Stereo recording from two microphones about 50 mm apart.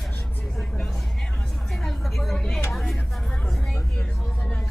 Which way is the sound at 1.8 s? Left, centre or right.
Centre.